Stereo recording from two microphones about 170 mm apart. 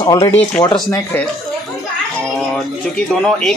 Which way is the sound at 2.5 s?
5° left (ahead or behind).